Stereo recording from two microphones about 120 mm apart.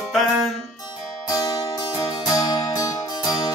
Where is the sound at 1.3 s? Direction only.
30° left (ahead or behind).